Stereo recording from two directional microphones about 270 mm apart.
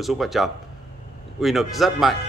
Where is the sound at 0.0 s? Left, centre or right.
Centre.